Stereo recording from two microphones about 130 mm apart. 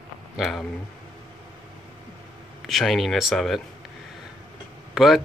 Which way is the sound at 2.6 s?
Centre (ahead or behind).